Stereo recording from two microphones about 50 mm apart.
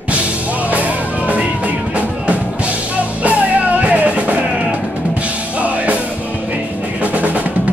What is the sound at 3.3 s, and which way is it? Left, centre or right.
Music, right.